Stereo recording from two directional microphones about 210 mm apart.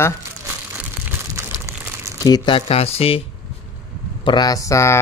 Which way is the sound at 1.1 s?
15° right (ahead or behind).